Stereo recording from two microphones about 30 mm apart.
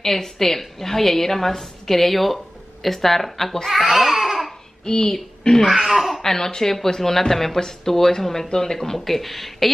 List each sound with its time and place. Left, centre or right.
0.0 s a woman's voice: centre
3.7 s baby cry: centre
4.8 s speech: left
5.9 s speech: centre
6.2 s a woman's voice: centre
8.7 s speech: centre